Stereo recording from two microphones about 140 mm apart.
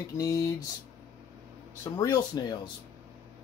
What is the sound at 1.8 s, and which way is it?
Speech, 30° left (ahead or behind).